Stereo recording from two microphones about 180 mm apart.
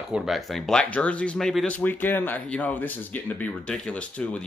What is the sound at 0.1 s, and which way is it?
Speech, centre (ahead or behind).